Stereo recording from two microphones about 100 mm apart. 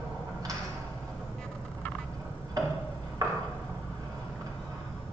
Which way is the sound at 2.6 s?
40° right (ahead or behind).